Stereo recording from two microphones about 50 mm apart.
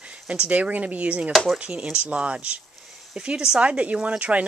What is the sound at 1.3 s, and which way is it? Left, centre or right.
Speech, centre.